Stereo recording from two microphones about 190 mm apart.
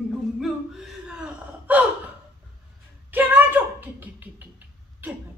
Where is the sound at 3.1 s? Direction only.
10° right (ahead or behind).